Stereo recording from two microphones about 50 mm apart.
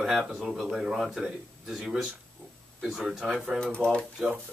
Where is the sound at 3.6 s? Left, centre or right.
Centre.